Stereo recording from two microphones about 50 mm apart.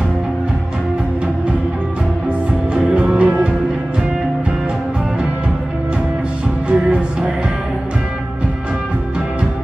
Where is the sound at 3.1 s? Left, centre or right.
Centre.